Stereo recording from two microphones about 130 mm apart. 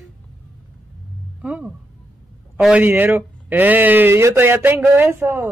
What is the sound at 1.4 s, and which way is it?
Speech, 10° right (ahead or behind).